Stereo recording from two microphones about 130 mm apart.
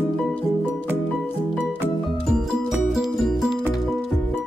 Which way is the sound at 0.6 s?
10° right (ahead or behind).